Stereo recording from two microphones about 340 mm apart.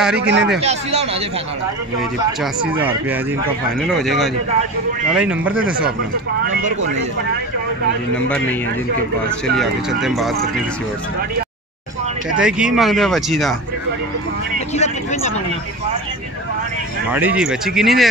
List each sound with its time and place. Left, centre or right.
0.2 s speech: right
0.6 s speech: centre
2.6 s speech: centre
9.6 s speech: centre
12.4 s speech: centre
14.8 s a sound: centre
17.1 s speech: centre